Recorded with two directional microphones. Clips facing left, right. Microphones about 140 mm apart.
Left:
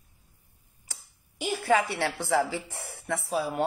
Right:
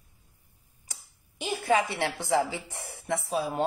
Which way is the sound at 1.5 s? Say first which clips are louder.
Left 1 dB; 20° right (ahead or behind).